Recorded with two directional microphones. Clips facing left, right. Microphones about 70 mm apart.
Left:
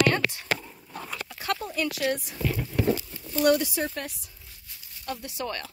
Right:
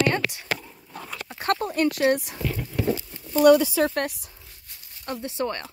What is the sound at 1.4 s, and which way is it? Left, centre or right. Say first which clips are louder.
Speech: right 6 dB; right.